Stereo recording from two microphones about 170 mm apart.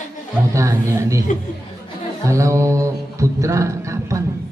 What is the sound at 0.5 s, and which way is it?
Speech, 15° right (ahead or behind).